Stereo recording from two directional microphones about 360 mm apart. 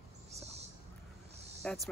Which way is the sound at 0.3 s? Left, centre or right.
Centre.